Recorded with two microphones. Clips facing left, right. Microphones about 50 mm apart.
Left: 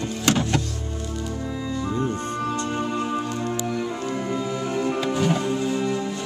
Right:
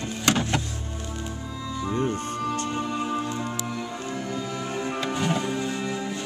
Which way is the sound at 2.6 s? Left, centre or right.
Centre.